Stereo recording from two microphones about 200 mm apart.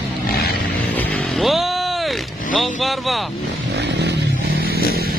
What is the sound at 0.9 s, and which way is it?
Music, 5° left (ahead or behind).